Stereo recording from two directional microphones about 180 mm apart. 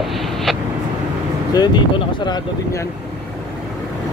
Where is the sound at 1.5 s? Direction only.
25° left (ahead or behind).